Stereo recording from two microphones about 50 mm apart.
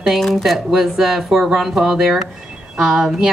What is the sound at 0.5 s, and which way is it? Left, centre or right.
A woman's voice, centre.